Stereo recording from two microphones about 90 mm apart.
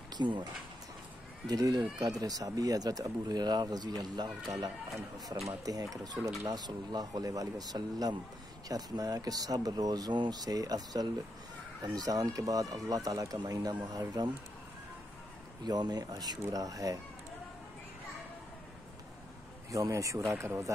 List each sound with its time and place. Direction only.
0.1 s speech: 55° right (ahead or behind)
1.5 s speech: 45° right (ahead or behind)
5.5 s speech: 45° right (ahead or behind)
15.6 s speech: 50° right (ahead or behind)
19.7 s speech: 40° right (ahead or behind)